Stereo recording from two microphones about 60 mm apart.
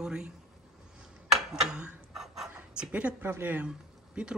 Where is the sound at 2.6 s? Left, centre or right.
Centre.